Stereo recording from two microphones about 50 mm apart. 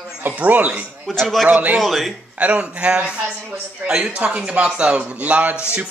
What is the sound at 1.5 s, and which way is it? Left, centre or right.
Speech, right.